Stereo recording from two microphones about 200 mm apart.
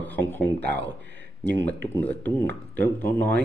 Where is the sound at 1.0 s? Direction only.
60° right (ahead or behind).